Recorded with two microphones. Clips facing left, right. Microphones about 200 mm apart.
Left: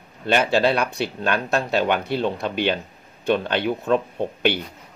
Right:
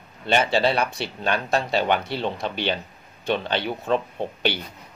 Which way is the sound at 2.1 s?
55° left (ahead or behind).